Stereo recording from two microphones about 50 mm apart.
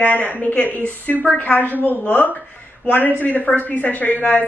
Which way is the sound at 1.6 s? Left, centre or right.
Right.